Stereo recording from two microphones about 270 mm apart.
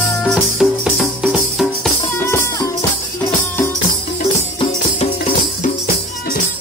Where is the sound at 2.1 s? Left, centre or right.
Centre.